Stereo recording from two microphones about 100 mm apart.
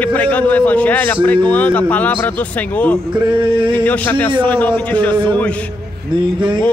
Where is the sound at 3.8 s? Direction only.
15° left (ahead or behind).